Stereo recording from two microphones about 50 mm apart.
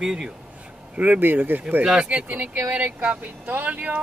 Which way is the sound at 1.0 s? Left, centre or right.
Right.